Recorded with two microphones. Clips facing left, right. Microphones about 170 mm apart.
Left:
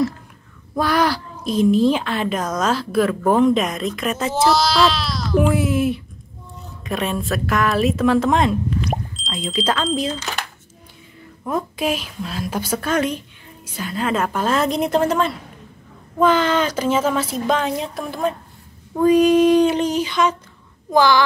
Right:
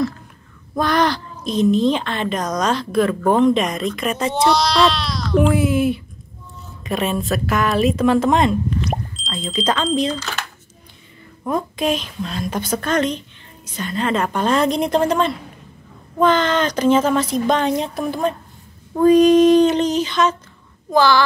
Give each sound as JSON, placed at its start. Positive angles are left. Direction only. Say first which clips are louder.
{"t": 0.7, "sound": "a woman's voice", "louder": "right 1 dB", "side_deg": 5}
{"t": 11.4, "sound": "a woman's voice", "louder": "right 2 dB", "side_deg": 5}